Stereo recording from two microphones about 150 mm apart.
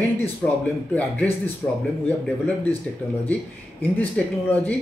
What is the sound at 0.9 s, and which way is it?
Speech, 10° left (ahead or behind).